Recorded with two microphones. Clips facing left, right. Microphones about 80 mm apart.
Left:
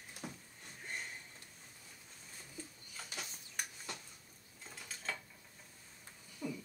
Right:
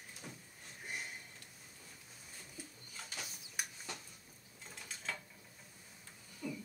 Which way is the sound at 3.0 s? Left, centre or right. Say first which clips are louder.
Left 1 dB; centre.